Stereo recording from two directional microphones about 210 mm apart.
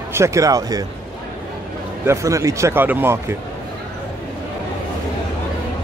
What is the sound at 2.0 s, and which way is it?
Speech, 15° right (ahead or behind).